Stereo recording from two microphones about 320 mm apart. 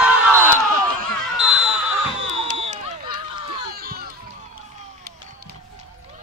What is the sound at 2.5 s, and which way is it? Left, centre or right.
Run, right.